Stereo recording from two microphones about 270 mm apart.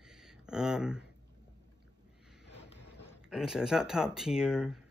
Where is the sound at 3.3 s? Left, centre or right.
Centre.